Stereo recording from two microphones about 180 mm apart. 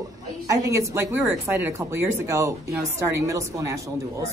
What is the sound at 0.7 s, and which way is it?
A woman's voice, 15° right (ahead or behind).